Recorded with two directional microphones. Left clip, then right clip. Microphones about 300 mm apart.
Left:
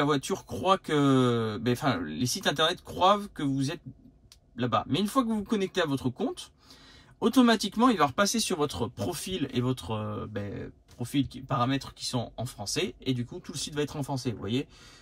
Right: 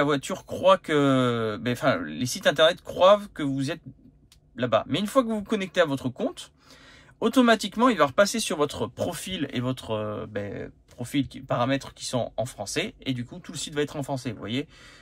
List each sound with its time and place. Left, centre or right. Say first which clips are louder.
0.0 s speech: right 2 dB; centre